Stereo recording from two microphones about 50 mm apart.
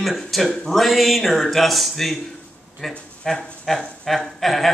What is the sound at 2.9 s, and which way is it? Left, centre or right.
Speech, centre.